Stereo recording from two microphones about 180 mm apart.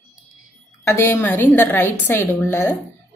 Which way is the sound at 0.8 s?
15° left (ahead or behind).